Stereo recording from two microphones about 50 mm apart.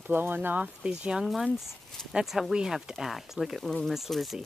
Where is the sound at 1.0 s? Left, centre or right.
Centre.